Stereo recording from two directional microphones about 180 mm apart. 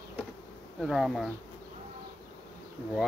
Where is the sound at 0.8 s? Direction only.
Centre (ahead or behind).